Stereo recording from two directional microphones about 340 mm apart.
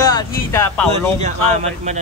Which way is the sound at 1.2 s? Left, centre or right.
Centre.